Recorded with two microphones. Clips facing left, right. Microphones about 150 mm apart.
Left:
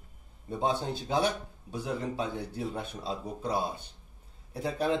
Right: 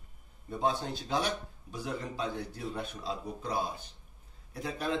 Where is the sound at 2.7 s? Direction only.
30° left (ahead or behind).